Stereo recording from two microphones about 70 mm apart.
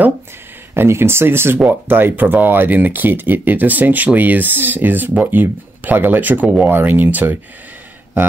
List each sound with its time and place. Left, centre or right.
0.7 s speech: right